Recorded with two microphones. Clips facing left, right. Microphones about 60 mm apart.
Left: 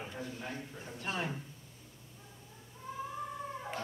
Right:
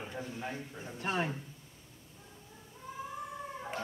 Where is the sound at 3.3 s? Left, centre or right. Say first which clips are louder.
Even; centre.